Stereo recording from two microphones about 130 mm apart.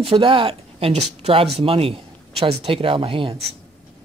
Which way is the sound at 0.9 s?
55° right (ahead or behind).